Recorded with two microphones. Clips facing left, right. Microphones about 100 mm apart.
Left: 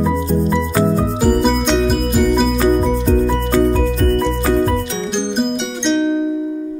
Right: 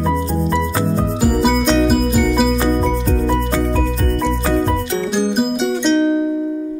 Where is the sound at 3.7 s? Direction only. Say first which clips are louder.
Left 3 dB; centre (ahead or behind).